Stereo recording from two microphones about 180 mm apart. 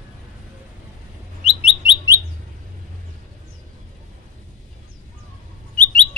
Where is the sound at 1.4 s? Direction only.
30° left (ahead or behind).